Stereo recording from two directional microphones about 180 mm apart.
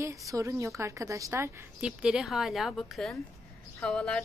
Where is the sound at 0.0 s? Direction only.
15° right (ahead or behind).